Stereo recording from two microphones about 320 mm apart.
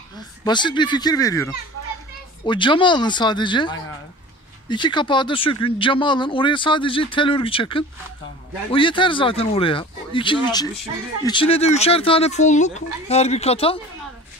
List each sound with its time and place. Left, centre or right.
0.5 s speech: centre